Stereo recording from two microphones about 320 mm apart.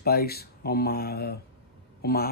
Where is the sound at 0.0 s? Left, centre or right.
Left.